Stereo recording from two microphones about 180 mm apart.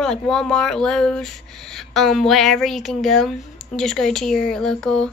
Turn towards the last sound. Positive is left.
turn(degrees=5)  # may be behind; listen again after turning